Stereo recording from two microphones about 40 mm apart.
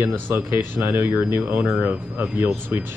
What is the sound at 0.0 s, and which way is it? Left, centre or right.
Speech, right.